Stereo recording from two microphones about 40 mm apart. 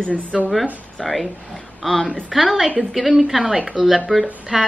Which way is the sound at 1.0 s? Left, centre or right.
Centre.